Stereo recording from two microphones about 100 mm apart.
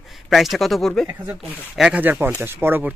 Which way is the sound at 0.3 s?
Centre (ahead or behind).